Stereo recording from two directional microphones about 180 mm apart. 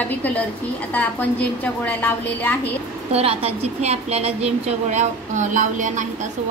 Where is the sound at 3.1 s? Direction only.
35° right (ahead or behind).